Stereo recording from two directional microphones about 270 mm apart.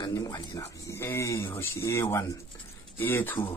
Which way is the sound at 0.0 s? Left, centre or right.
Centre.